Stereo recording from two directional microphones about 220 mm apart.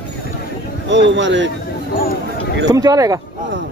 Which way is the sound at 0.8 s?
55° right (ahead or behind).